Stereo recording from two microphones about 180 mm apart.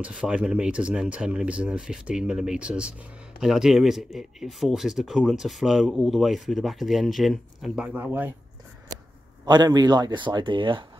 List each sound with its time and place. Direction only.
0.0 s speech: 5° right (ahead or behind)
9.5 s speech: 20° right (ahead or behind)